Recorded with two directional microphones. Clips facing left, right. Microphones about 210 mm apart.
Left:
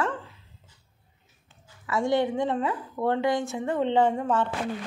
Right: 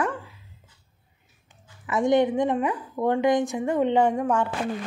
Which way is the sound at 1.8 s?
20° right (ahead or behind).